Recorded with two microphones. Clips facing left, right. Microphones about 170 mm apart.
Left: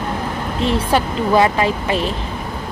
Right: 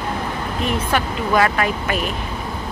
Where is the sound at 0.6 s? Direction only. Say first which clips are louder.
Left 4 dB; 30° left (ahead or behind).